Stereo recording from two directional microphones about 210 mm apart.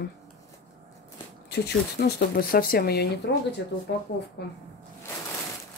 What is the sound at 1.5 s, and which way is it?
Speech, 50° left (ahead or behind).